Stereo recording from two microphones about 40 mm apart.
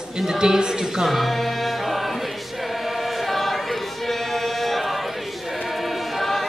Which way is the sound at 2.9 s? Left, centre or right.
Centre.